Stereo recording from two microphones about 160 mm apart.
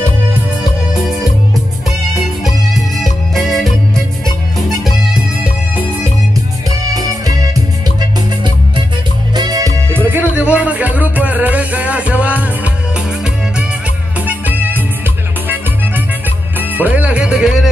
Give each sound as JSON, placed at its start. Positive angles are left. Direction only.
{"t": 2.7, "sound": "music", "side_deg": 0}
{"t": 6.9, "sound": "music", "side_deg": -20}
{"t": 9.3, "sound": "music", "side_deg": -25}
{"t": 14.2, "sound": "music", "side_deg": -10}
{"t": 16.5, "sound": "music", "side_deg": -10}